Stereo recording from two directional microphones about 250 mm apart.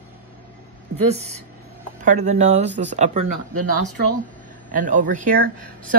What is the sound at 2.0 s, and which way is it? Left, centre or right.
A woman's voice, right.